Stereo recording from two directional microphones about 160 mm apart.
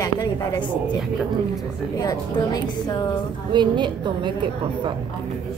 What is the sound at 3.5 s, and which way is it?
Speech, 30° right (ahead or behind).